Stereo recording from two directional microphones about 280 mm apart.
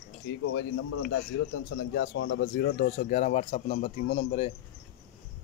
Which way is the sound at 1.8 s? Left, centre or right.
Left.